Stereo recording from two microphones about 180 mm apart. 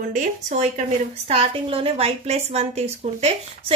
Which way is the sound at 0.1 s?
45° right (ahead or behind).